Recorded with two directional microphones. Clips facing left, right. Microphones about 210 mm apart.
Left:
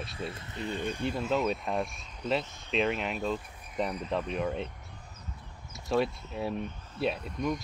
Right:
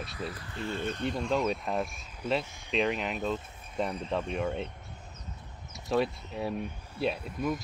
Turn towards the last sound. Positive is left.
turn(degrees=-5)  # may be behind; listen again after turning